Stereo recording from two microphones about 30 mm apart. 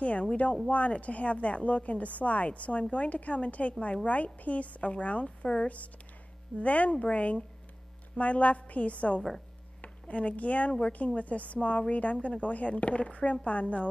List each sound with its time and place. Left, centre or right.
0.0 s a woman's voice: left
5.2 s a woman's voice: left
6.6 s a woman's voice: left